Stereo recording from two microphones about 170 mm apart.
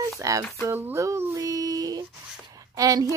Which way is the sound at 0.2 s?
20° right (ahead or behind).